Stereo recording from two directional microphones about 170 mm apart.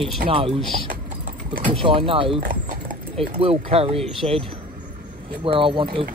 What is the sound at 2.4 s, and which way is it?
Horse, 55° right (ahead or behind).